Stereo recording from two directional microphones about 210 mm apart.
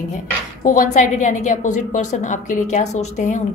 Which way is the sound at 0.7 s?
35° left (ahead or behind).